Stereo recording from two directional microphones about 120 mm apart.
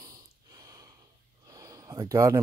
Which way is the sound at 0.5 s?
30° right (ahead or behind).